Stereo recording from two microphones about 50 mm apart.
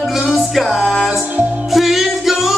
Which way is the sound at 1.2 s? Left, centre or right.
Right.